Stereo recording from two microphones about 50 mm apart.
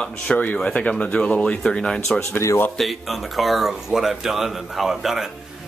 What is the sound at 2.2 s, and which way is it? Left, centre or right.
Speech, left.